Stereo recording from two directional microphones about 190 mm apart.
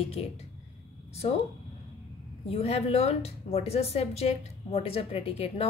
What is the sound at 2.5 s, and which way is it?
A woman's voice, 30° left (ahead or behind).